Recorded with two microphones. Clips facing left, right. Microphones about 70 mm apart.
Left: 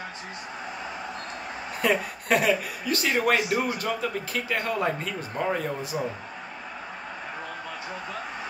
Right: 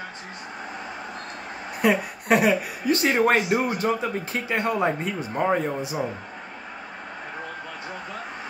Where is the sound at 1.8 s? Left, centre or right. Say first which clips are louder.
Right 3 dB; right.